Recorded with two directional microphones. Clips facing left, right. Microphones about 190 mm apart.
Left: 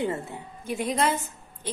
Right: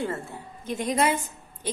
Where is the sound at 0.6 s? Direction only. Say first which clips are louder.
Even; 5° left (ahead or behind).